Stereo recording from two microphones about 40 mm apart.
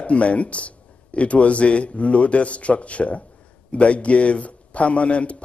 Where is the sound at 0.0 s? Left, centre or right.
Left.